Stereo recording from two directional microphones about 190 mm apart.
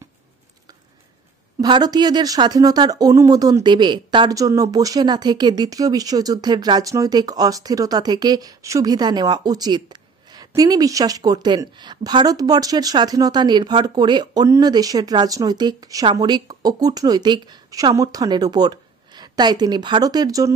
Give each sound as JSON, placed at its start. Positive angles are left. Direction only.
{"t": 1.6, "sound": "speech", "side_deg": -20}